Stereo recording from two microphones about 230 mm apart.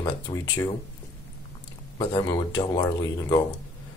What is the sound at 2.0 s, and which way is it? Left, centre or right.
Speech, centre.